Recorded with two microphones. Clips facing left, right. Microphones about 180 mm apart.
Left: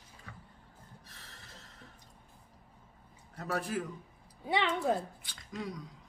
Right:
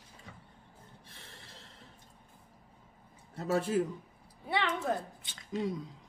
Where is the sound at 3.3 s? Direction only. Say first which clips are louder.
Right 5 dB; 25° right (ahead or behind).